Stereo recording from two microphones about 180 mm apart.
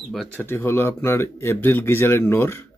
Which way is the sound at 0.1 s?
5° left (ahead or behind).